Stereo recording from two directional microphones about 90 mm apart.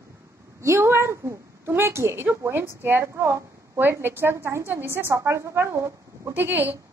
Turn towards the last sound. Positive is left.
turn(degrees=-20)  # may be behind; listen again after turning